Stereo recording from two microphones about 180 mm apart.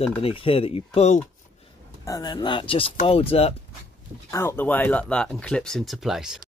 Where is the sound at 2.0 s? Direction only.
20° left (ahead or behind).